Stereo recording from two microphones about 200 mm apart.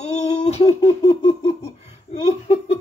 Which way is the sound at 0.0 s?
35° left (ahead or behind).